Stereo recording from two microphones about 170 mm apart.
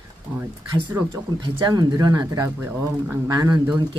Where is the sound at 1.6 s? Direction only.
20° right (ahead or behind).